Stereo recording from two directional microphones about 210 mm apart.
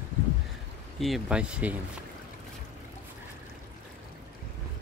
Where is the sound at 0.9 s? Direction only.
Centre (ahead or behind).